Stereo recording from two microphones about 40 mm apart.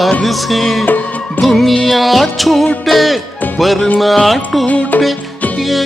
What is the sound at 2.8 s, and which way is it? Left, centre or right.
Speech, centre.